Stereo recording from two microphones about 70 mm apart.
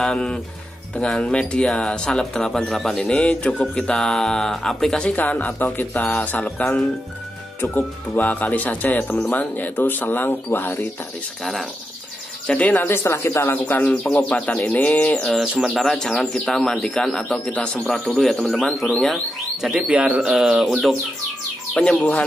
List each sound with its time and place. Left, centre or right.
0.0 s speech: centre
5.1 s speech: left
6.0 s speech: centre
7.6 s speech: left
8.2 s speech: left
12.4 s speech: centre
14.3 s speech: centre
15.1 s speech: centre
19.6 s speech: centre
20.0 s speech: centre
20.2 s speech: centre